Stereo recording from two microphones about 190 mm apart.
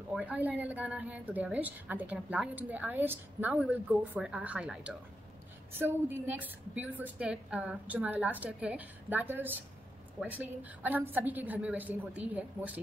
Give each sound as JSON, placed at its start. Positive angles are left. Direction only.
{"t": 0.1, "sound": "a woman's voice", "side_deg": -10}